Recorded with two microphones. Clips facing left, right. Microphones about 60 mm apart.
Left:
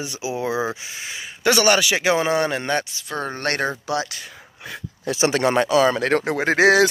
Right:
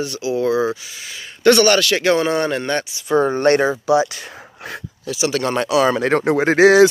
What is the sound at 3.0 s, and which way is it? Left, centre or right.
Speech, centre.